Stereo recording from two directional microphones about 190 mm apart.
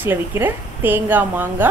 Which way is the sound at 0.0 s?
10° right (ahead or behind).